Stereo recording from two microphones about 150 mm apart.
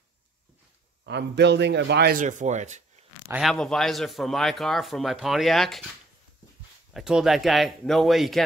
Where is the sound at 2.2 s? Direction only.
55° right (ahead or behind).